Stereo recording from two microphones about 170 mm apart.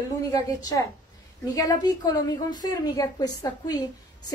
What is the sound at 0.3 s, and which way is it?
A woman's voice, 20° left (ahead or behind).